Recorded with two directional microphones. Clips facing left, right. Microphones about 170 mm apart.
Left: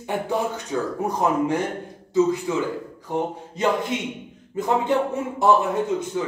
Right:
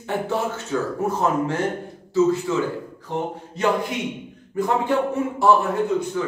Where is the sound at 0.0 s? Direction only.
15° left (ahead or behind).